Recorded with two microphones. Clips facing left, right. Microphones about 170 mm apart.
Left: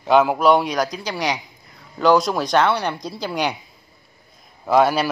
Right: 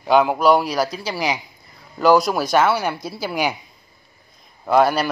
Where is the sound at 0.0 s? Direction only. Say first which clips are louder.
Even; centre (ahead or behind).